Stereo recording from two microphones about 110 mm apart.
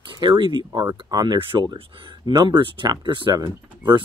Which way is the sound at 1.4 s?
50° right (ahead or behind).